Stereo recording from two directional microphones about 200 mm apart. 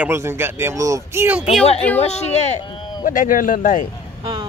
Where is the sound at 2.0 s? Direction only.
30° left (ahead or behind).